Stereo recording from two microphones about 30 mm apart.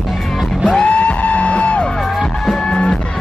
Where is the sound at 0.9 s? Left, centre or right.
Left.